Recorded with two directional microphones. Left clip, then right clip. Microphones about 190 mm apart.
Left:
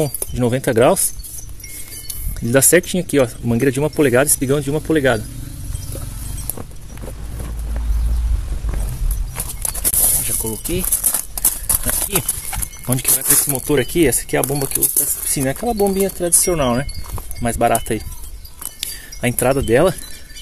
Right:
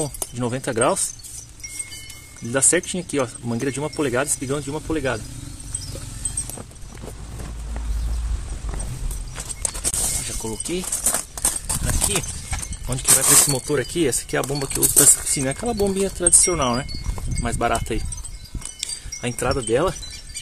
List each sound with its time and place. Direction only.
0.4 s speech: 25° left (ahead or behind)
2.5 s speech: 25° left (ahead or behind)
9.6 s horse: 35° left (ahead or behind)
10.2 s a sound: centre (ahead or behind)
10.7 s a sound: 10° left (ahead or behind)
11.6 s horse: 15° left (ahead or behind)
12.8 s speech: 35° left (ahead or behind)
13.5 s speech: 25° left (ahead or behind)
14.4 s speech: 5° left (ahead or behind)
18.8 s speech: 25° left (ahead or behind)